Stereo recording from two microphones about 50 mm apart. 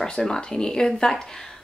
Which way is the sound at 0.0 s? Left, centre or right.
Centre.